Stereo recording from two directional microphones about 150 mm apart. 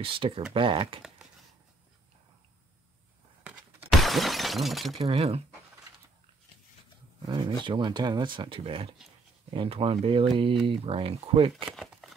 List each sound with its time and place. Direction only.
0.2 s speech: 35° right (ahead or behind)
3.4 s shatter: 5° right (ahead or behind)
5.0 s speech: 45° right (ahead or behind)
7.2 s speech: 30° right (ahead or behind)
11.5 s speech: centre (ahead or behind)